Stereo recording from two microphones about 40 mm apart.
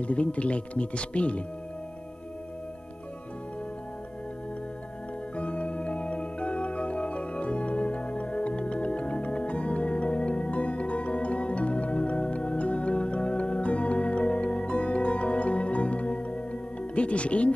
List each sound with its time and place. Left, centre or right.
0.0 s speech: left
5.3 s music: left